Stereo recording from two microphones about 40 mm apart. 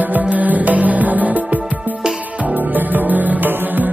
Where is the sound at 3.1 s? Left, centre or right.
Right.